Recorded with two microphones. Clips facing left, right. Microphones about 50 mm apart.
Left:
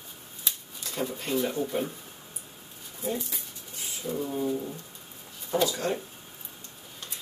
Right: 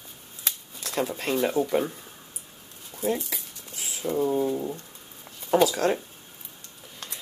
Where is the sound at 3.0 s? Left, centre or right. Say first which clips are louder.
Right 5 dB; right.